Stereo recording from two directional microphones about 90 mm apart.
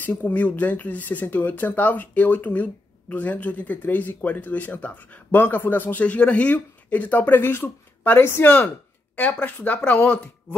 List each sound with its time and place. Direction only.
0.0 s speech: 20° left (ahead or behind)